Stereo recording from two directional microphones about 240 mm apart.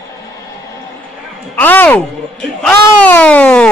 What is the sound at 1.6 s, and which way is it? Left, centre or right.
Speech, centre.